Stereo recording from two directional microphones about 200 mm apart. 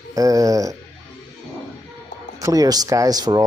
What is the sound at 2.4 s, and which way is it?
Speech, 15° right (ahead or behind).